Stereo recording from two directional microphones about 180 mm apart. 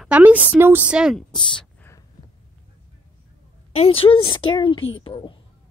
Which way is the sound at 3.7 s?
35° left (ahead or behind).